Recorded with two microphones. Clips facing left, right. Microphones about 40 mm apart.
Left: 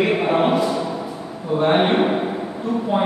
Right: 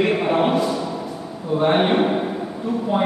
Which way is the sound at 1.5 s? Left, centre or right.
Centre.